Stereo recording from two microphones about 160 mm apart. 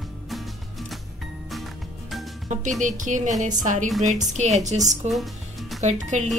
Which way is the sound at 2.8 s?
50° right (ahead or behind).